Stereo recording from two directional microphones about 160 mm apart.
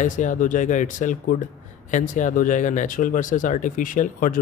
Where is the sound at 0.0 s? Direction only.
50° left (ahead or behind).